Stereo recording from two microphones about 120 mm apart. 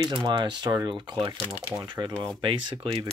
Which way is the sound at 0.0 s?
40° right (ahead or behind).